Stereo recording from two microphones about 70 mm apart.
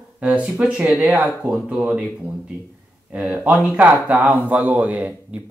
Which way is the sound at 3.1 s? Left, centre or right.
Centre.